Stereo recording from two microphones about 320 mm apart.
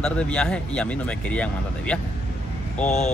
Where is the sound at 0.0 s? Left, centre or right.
Centre.